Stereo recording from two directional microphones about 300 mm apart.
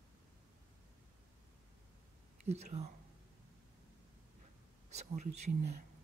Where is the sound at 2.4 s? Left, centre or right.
Right.